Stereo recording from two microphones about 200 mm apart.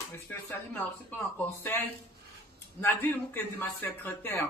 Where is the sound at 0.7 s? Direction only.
10° left (ahead or behind).